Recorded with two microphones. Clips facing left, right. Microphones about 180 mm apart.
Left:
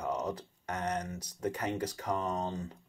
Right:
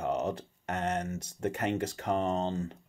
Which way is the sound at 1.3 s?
50° right (ahead or behind).